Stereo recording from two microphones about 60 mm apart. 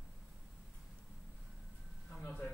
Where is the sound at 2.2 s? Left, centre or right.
Left.